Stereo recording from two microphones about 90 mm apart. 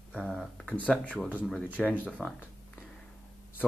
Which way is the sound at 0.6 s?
15° left (ahead or behind).